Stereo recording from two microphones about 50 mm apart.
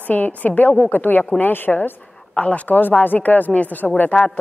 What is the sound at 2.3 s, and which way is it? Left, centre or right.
A woman's voice, left.